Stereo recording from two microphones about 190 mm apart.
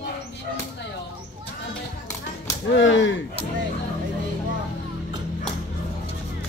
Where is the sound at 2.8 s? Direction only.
75° left (ahead or behind).